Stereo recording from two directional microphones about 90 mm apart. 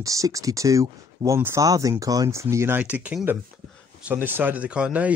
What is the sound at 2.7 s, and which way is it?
Speech, 15° right (ahead or behind).